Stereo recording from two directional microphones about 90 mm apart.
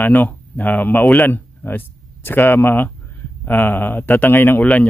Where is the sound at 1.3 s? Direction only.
25° left (ahead or behind).